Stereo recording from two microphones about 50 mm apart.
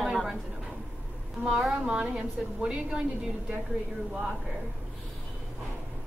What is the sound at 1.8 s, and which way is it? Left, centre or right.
A woman's voice, centre.